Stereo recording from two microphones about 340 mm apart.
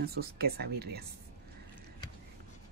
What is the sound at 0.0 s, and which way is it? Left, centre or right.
Speech, right.